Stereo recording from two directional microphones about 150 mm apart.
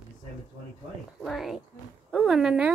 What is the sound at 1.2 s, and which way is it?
Speech, centre (ahead or behind).